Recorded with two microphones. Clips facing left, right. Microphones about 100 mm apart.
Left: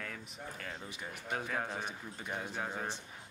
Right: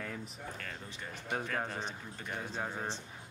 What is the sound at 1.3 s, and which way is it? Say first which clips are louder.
Speech: right 1 dB; 5° left (ahead or behind).